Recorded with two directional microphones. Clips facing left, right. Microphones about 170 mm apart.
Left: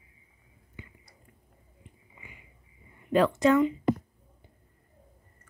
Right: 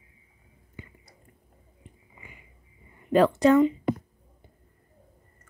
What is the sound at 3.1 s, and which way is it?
Speech, 40° right (ahead or behind).